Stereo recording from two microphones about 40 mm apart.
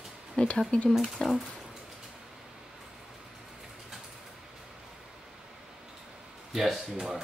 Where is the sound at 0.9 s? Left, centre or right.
Centre.